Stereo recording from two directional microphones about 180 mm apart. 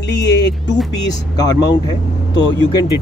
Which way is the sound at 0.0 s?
70° left (ahead or behind).